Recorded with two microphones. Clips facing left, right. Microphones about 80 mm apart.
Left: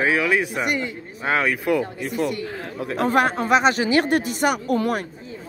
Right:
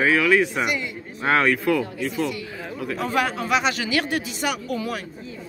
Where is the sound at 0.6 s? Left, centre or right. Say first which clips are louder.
Left 1 dB; left.